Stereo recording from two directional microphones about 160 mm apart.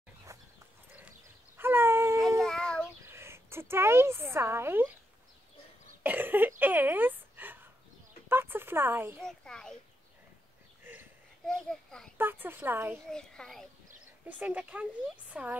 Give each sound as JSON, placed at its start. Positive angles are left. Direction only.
{"t": 0.3, "sound": "dog", "side_deg": -20}
{"t": 1.6, "sound": "a sound", "side_deg": -15}
{"t": 2.4, "sound": "child singing", "side_deg": 5}
{"t": 3.1, "sound": "speech", "side_deg": -15}
{"t": 6.0, "sound": "cough", "side_deg": -10}
{"t": 6.6, "sound": "a sound", "side_deg": -10}
{"t": 8.3, "sound": "speech", "side_deg": -15}
{"t": 9.2, "sound": "a child's voice", "side_deg": 5}
{"t": 11.4, "sound": "a child's voice", "side_deg": 5}
{"t": 12.2, "sound": "speech", "side_deg": -15}
{"t": 13.1, "sound": "a child's voice", "side_deg": 5}
{"t": 14.2, "sound": "speech", "side_deg": -10}